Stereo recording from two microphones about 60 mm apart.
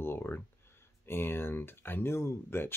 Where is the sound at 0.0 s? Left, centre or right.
Left.